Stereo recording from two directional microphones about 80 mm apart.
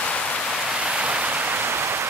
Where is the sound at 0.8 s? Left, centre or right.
Centre.